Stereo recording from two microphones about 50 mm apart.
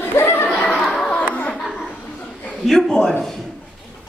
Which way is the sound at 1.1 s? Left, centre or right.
Left.